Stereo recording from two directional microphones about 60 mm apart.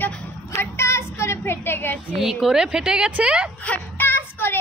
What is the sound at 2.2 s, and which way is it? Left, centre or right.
A woman's voice, centre.